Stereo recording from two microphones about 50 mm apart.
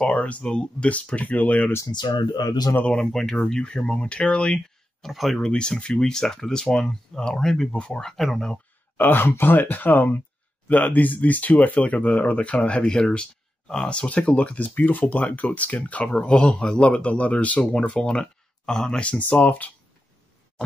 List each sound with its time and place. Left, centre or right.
0.0 s speech: left
2.9 s speech: centre
4.6 s a sound: centre
5.4 s speech: centre
8.1 s speech: centre
8.9 s speech: left
14.7 s speech: left; by 19.1 s centre
19.4 s speech: left